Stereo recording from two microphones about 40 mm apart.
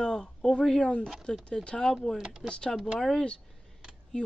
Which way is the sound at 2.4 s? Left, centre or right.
Left.